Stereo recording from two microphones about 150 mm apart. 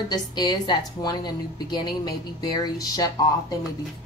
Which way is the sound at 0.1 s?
30° left (ahead or behind).